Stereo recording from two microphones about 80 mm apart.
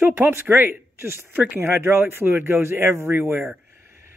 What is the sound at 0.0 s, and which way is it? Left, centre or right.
Speech, right.